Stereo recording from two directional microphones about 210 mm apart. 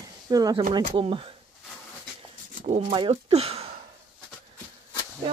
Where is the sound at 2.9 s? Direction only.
25° right (ahead or behind).